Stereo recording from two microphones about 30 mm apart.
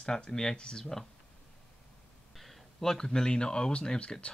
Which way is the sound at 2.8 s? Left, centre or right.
Centre.